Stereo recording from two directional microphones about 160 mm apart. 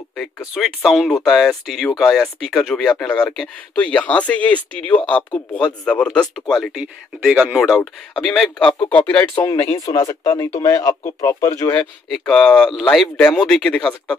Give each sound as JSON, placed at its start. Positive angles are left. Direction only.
{"t": 0.6, "sound": "speech", "side_deg": 0}
{"t": 9.4, "sound": "speech", "side_deg": 20}
{"t": 11.7, "sound": "speech", "side_deg": 0}